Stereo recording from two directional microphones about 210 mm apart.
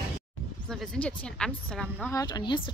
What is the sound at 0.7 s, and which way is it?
Speech, 5° left (ahead or behind).